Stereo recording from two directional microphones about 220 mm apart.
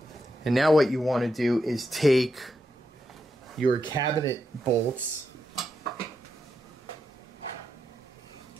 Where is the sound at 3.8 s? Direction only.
20° left (ahead or behind).